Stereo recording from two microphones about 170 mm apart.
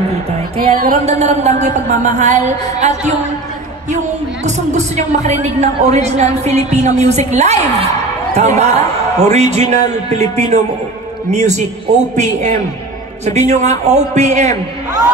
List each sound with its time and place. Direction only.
0.6 s music: 60° right (ahead or behind)
1.0 s speech: 40° right (ahead or behind)
4.5 s speech: 45° right (ahead or behind)